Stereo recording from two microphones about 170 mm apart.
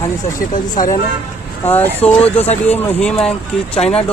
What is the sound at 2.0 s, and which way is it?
Speech, 5° left (ahead or behind).